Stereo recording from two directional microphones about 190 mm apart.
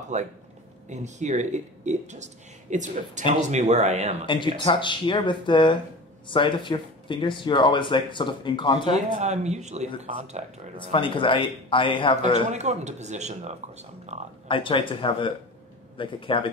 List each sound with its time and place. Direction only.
0.1 s speech: 40° right (ahead or behind)
4.6 s speech: 25° left (ahead or behind)
9.2 s speech: 35° right (ahead or behind)
10.8 s speech: 25° left (ahead or behind)
12.4 s speech: 35° right (ahead or behind)
14.5 s speech: 25° left (ahead or behind)